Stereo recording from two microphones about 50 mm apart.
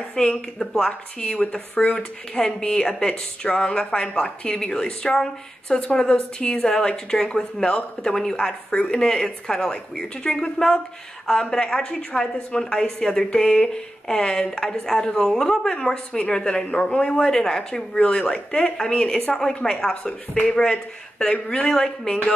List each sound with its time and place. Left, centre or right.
0.1 s a woman's voice: centre
1.2 s a woman's voice: left; by 22.2 s centre